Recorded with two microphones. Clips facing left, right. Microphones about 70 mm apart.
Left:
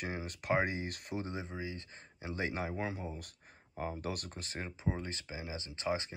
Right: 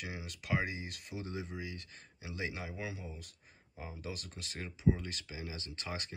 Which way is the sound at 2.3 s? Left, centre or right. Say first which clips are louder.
Left 4 dB; left.